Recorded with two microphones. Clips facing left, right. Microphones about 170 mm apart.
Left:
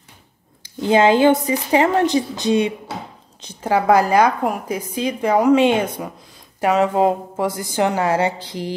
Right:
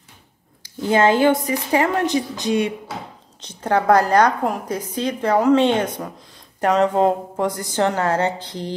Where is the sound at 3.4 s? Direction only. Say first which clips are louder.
Left 1 dB; 10° left (ahead or behind).